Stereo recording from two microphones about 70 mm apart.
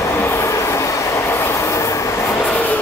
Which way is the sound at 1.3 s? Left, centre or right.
Left.